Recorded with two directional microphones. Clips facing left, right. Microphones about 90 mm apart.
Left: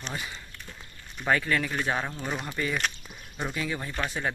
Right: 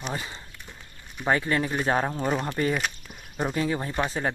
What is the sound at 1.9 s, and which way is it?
Speech, 40° right (ahead or behind).